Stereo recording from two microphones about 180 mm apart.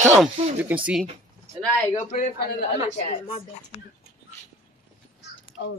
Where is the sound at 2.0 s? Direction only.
45° left (ahead or behind).